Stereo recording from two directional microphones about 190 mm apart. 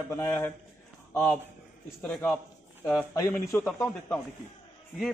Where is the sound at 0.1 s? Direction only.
15° left (ahead or behind).